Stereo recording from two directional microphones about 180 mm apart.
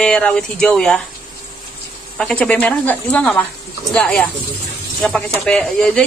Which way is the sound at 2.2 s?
5° left (ahead or behind).